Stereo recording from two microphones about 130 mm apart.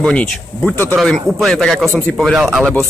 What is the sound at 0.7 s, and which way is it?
Speech, 20° right (ahead or behind).